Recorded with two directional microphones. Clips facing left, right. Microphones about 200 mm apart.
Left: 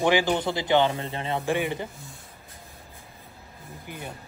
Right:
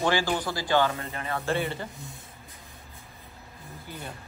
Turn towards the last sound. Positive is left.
turn(degrees=15)  # may be behind; listen again after turning